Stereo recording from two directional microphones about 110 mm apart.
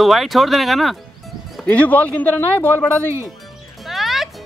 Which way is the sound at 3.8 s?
Centre (ahead or behind).